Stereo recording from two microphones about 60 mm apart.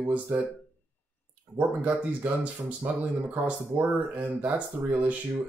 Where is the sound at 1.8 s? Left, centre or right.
Right.